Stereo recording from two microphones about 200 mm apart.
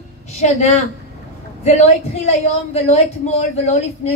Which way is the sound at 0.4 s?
35° left (ahead or behind).